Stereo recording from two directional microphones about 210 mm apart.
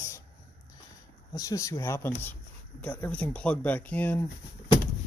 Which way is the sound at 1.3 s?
15° left (ahead or behind).